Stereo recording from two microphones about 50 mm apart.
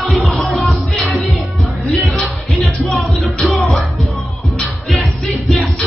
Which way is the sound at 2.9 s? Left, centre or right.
Centre.